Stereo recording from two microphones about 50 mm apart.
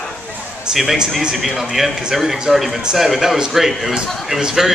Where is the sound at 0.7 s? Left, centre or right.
Centre.